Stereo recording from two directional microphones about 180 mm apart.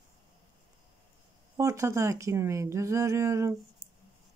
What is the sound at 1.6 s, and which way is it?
Speech, 15° right (ahead or behind).